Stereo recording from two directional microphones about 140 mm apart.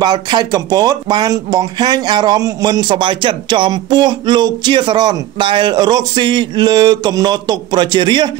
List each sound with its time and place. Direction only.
0.0 s speech: 30° right (ahead or behind)